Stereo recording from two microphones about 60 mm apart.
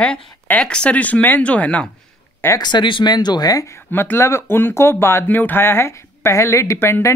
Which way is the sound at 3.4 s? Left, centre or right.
Left.